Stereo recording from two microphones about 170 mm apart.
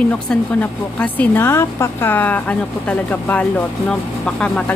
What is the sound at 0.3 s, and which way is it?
A woman's voice, 5° left (ahead or behind).